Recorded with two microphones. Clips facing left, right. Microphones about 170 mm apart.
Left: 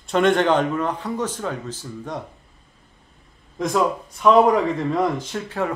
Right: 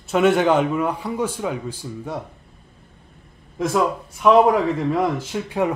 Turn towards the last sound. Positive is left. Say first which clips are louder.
# right 3 dB
turn(degrees=-15)  # may be behind; listen again after turning